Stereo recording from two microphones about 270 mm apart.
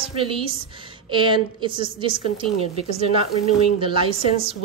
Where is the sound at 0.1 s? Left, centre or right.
Centre.